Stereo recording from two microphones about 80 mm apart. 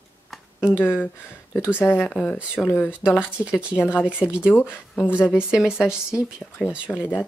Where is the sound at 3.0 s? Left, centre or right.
Left.